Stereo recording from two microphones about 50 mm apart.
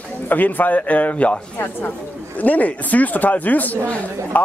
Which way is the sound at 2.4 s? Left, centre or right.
Left.